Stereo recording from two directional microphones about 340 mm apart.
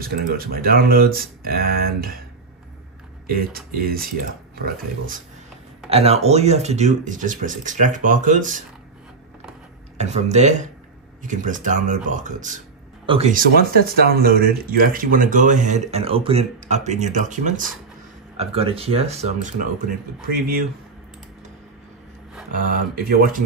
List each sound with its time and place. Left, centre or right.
0.0 s speech: right
3.3 s speech: right
9.9 s speech: centre
22.6 s speech: right